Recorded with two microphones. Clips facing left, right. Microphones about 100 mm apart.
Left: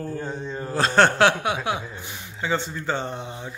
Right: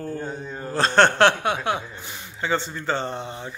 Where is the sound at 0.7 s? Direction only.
5° left (ahead or behind).